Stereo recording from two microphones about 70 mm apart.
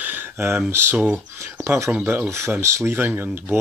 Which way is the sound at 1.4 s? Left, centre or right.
Right.